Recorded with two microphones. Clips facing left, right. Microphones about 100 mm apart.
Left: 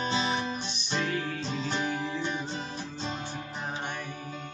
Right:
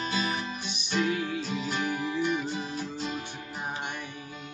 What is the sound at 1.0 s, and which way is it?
Music, 10° right (ahead or behind).